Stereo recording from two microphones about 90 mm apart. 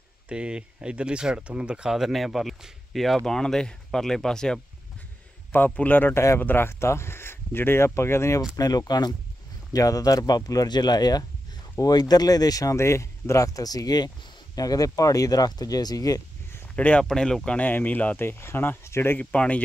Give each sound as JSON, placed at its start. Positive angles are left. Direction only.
{"t": 0.3, "sound": "speech", "side_deg": -10}
{"t": 5.5, "sound": "speech", "side_deg": 20}
{"t": 8.5, "sound": "speech", "side_deg": 45}
{"t": 16.7, "sound": "speech", "side_deg": 15}
{"t": 17.6, "sound": "speech", "side_deg": 20}
{"t": 19.3, "sound": "speech", "side_deg": 15}